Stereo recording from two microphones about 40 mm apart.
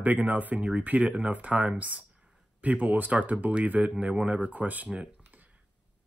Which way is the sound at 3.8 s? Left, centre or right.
Right.